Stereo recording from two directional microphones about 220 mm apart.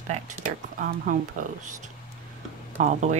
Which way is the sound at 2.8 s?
35° right (ahead or behind).